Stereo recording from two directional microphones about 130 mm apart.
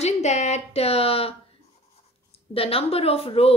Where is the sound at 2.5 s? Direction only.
45° left (ahead or behind).